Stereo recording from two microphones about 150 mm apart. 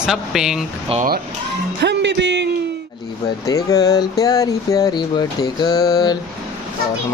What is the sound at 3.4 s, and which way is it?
Speech, 25° left (ahead or behind).